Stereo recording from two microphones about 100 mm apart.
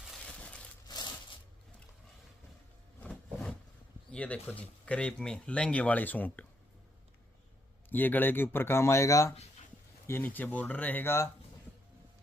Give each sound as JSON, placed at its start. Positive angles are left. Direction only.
{"t": 0.2, "sound": "crushing", "side_deg": 10}
{"t": 0.8, "sound": "a sound", "side_deg": 45}
{"t": 3.1, "sound": "a sound", "side_deg": 0}
{"t": 4.1, "sound": "speech", "side_deg": 10}
{"t": 7.9, "sound": "speech", "side_deg": 20}
{"t": 10.0, "sound": "speech", "side_deg": 20}